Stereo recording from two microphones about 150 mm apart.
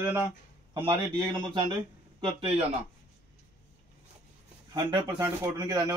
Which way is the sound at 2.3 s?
40° right (ahead or behind).